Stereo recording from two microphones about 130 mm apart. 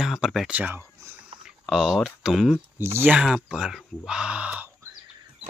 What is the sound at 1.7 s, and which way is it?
Speech, centre (ahead or behind).